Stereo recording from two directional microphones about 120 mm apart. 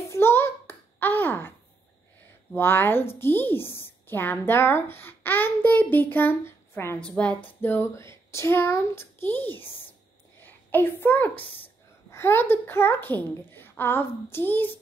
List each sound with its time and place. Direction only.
0.1 s a sound: 20° left (ahead or behind)
2.5 s a woman's voice: 15° left (ahead or behind)
7.1 s a woman's voice: 10° left (ahead or behind)